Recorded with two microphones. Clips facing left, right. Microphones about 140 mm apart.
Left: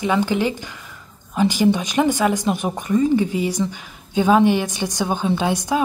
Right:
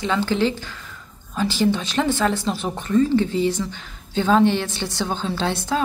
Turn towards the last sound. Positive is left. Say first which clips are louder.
# left 3 dB
turn(degrees=15)  # may be behind; listen again after turning